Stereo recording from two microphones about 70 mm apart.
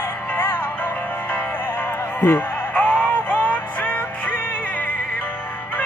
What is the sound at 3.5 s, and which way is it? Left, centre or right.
Music, left.